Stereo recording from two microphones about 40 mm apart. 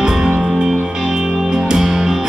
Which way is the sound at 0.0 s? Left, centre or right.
Centre.